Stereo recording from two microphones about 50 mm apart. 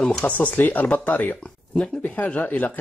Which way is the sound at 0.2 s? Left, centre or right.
Left.